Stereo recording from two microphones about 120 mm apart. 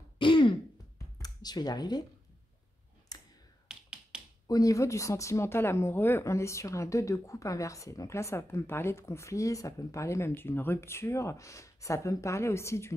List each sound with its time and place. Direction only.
0.2 s throat clearing: 45° left (ahead or behind)
0.9 s a sound: 30° left (ahead or behind)
3.6 s finger snapping: 5° right (ahead or behind)
4.5 s speech: 30° left (ahead or behind)